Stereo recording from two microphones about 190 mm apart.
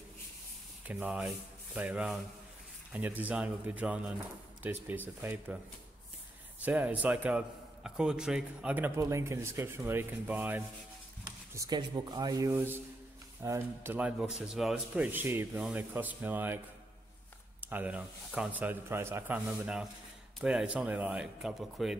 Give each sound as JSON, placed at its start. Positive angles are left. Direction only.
{"t": 0.8, "sound": "a man's voice", "side_deg": -5}
{"t": 6.6, "sound": "a man's voice", "side_deg": -10}
{"t": 17.6, "sound": "a man's voice", "side_deg": -10}